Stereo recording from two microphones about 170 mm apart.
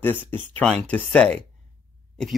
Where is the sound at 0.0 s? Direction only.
10° left (ahead or behind).